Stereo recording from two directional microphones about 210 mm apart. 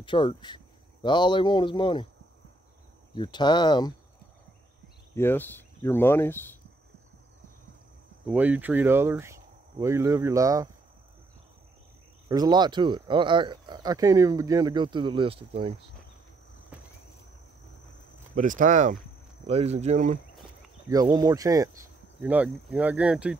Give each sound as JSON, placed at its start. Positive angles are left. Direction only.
{"t": 0.0, "sound": "speech", "side_deg": 25}
{"t": 3.2, "sound": "speech", "side_deg": 20}
{"t": 5.1, "sound": "speech", "side_deg": 10}
{"t": 8.3, "sound": "speech", "side_deg": -5}
{"t": 12.3, "sound": "speech", "side_deg": -20}
{"t": 18.3, "sound": "speech", "side_deg": -40}
{"t": 20.9, "sound": "speech", "side_deg": -20}